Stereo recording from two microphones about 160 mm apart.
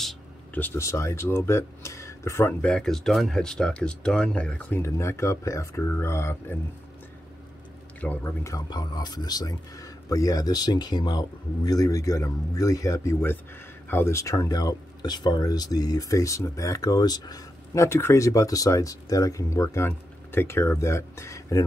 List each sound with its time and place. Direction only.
0.6 s speech: 15° left (ahead or behind)
2.7 s speech: centre (ahead or behind)
8.0 s speech: 10° left (ahead or behind)
8.5 s speech: 25° left (ahead or behind)